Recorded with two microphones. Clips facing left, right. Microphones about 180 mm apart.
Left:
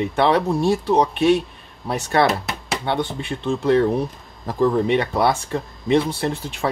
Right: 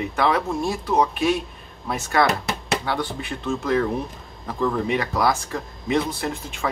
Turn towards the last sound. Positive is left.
turn(degrees=35)  # may be behind; listen again after turning